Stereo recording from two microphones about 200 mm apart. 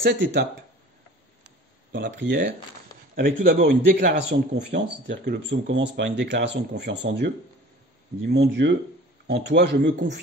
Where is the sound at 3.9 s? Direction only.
55° right (ahead or behind).